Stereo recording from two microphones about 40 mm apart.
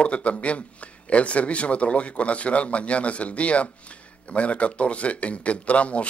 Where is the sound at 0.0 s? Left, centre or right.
Left.